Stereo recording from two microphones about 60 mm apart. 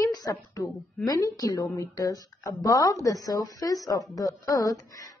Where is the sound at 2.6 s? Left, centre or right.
Left.